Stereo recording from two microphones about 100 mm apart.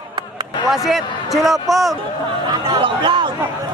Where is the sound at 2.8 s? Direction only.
55° right (ahead or behind).